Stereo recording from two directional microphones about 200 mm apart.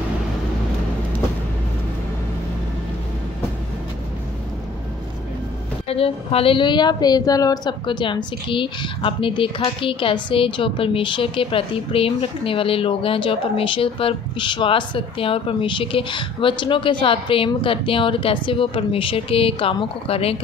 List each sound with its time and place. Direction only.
5.9 s a woman's voice: 30° left (ahead or behind)